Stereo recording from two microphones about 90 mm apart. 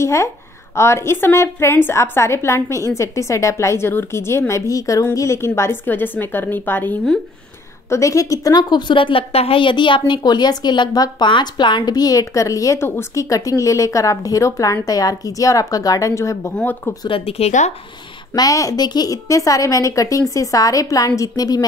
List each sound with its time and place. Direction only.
0.0 s a woman's voice: 30° left (ahead or behind)
7.9 s a woman's voice: 35° left (ahead or behind)
11.2 s a woman's voice: 60° left (ahead or behind); by 16.5 s 35° left (ahead or behind)
17.1 s speech: 90° left
18.3 s a woman's voice: 40° left (ahead or behind)